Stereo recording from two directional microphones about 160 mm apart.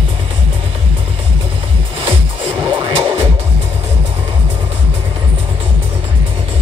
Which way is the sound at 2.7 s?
35° right (ahead or behind).